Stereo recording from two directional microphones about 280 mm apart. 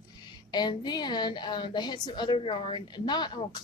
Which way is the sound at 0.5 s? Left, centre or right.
Centre.